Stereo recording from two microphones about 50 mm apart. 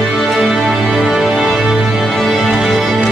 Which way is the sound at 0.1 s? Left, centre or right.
Centre.